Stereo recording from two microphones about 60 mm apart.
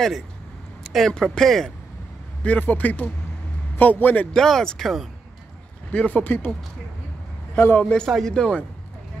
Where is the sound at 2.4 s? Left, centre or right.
Left.